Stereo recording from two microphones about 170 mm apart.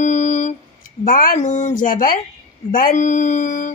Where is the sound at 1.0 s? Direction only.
55° left (ahead or behind).